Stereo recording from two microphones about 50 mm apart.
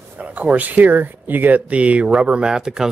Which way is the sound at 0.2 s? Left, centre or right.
Right.